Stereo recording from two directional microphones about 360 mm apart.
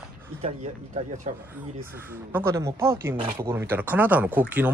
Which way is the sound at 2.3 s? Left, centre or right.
Centre.